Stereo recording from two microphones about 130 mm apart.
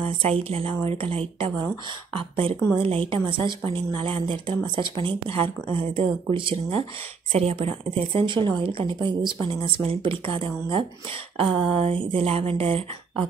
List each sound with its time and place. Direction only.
0.0 s a woman's voice: 45° right (ahead or behind)
2.8 s a woman's voice: 45° right (ahead or behind)